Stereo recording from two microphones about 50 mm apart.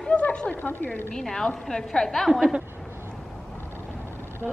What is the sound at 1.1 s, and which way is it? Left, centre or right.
A woman's voice, centre.